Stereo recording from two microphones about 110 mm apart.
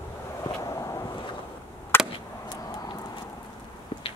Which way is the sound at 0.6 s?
30° left (ahead or behind).